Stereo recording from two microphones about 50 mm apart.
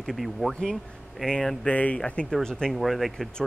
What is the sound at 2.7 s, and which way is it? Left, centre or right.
Speech, centre.